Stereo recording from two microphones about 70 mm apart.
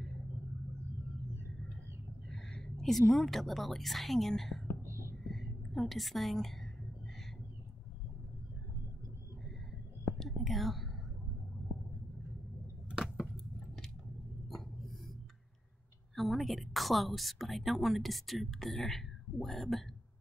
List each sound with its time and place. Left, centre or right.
2.2 s a woman's voice: centre
4.8 s whispering: right
5.2 s whispering: centre
5.7 s a woman's voice: centre
10.1 s whispering: centre
12.9 s a sound: centre
16.2 s a woman's voice: centre